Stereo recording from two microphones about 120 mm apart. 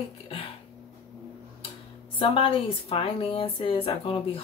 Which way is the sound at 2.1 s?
45° left (ahead or behind).